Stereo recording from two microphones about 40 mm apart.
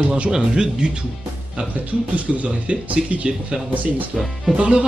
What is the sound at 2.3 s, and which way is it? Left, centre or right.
Speech, right.